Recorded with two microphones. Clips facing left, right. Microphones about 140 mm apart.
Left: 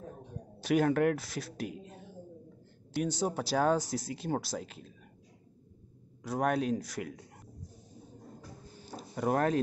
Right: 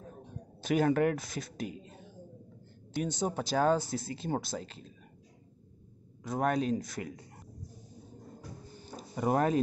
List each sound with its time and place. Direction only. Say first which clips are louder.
0.6 s speech: even; centre (ahead or behind)
6.2 s speech: even; 5° left (ahead or behind)
8.8 s a sound: even; centre (ahead or behind)